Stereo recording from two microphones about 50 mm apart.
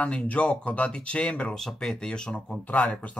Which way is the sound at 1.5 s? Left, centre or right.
Centre.